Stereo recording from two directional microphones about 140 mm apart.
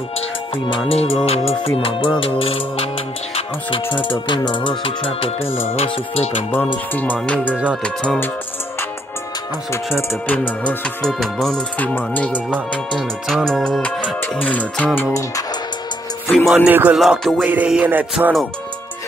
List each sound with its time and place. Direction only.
0.7 s music: 40° left (ahead or behind)
3.9 s music: 35° left (ahead or behind)
5.4 s music: 15° left (ahead or behind)
5.8 s speech: 45° left (ahead or behind)
6.9 s music: 10° left (ahead or behind)
7.5 s music: 5° right (ahead or behind)
7.8 s music: 5° left (ahead or behind)
10.0 s music: 10° left (ahead or behind)
16.3 s music: centre (ahead or behind)
16.6 s music: 10° right (ahead or behind)
17.0 s music: centre (ahead or behind)
17.4 s music: 10° right (ahead or behind)